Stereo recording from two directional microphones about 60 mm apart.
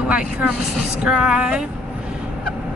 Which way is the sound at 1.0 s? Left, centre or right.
Centre.